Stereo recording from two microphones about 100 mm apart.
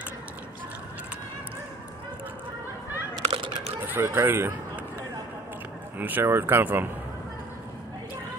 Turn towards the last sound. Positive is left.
turn(degrees=-20)  # may be behind; listen again after turning